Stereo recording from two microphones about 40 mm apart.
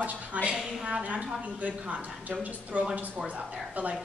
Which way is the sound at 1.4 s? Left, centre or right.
Right.